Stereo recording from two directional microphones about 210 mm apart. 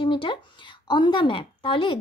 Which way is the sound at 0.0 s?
25° left (ahead or behind).